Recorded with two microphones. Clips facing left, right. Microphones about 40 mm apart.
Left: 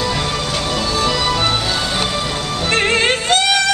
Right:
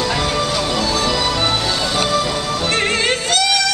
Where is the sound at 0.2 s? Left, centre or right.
Centre.